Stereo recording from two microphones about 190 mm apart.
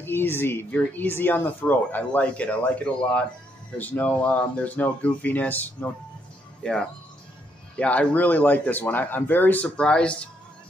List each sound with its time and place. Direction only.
0.0 s speech: 10° left (ahead or behind)